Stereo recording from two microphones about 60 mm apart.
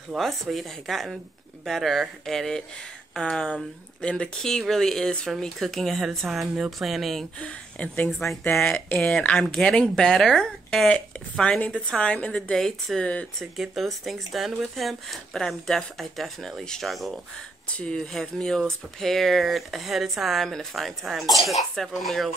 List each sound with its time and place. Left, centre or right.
0.2 s speech: centre
7.3 s speech: left
8.5 s speech: centre
13.0 s speech: left
13.6 s speech: centre
17.6 s speech: centre
17.9 s speech: centre